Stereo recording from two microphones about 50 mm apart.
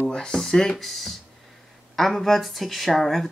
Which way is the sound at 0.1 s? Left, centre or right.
Centre.